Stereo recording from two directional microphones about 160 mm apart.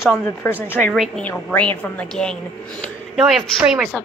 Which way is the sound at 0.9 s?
Centre (ahead or behind).